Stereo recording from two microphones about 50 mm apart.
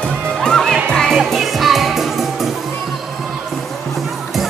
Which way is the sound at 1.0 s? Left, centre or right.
Centre.